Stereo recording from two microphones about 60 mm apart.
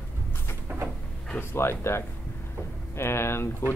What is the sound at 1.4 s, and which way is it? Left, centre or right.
Speech, left.